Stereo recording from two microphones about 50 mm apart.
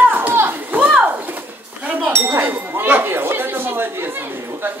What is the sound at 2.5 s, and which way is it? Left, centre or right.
Chatter, right.